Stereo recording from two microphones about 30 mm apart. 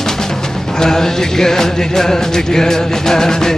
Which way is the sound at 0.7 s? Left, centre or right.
Centre.